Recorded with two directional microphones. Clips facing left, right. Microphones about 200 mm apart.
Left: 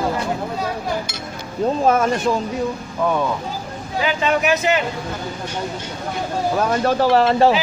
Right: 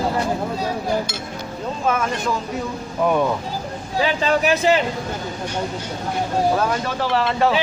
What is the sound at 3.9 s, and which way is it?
Speech, 35° right (ahead or behind).